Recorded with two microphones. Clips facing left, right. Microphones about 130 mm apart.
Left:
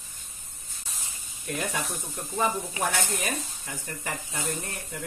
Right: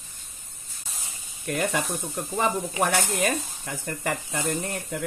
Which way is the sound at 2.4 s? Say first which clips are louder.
Right 3 dB; 70° right (ahead or behind).